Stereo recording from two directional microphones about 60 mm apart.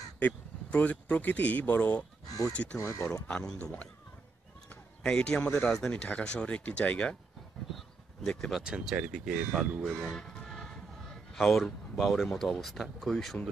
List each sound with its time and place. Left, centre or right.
0.2 s speech: left
2.2 s speech: left
2.5 s speech: left
2.8 s speech: left
3.3 s a man's voice: centre
5.0 s a man's voice: centre
8.3 s speech: centre
8.6 s speech: centre
9.1 s speech: centre
10.1 s music: centre
11.3 s speech: centre